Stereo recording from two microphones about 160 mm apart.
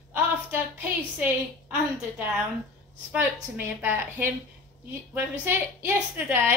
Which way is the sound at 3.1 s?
15° right (ahead or behind).